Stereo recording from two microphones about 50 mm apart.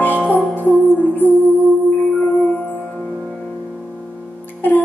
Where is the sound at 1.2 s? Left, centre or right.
Right.